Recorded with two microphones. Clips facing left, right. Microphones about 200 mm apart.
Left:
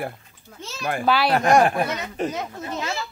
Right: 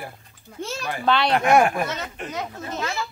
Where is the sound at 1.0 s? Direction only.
5° left (ahead or behind).